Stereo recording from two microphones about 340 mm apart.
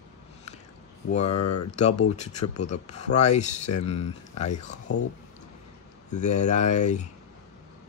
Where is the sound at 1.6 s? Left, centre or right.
Centre.